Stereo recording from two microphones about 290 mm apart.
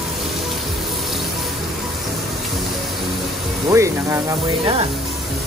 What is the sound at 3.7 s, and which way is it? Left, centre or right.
Speech, centre.